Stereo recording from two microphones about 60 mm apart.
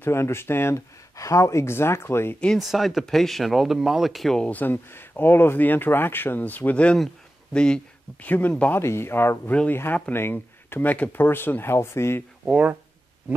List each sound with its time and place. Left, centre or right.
0.0 s speech: left
1.1 s speech: left
2.6 s speech: centre
4.5 s speech: left; by 7.8 s centre
8.2 s speech: left
8.7 s speech: left
12.4 s speech: right